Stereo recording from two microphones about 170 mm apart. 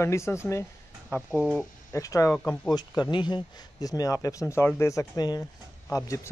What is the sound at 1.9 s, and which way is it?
Speech, 20° left (ahead or behind).